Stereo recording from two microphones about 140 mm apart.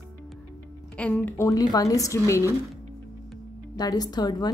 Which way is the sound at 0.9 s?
10° left (ahead or behind).